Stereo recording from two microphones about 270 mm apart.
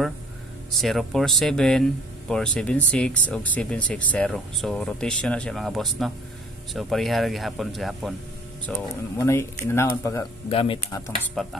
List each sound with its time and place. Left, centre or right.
0.7 s speech: centre